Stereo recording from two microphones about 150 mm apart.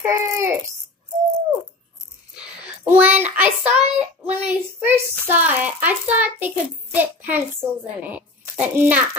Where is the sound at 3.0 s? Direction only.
10° right (ahead or behind).